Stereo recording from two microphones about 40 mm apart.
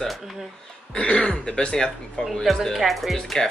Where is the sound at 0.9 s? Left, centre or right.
Left.